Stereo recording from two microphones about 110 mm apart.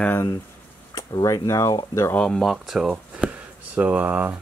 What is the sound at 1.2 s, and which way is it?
Speech, 30° left (ahead or behind).